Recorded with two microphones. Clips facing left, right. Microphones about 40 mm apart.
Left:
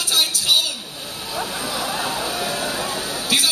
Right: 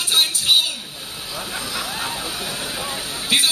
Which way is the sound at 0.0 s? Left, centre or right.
Right.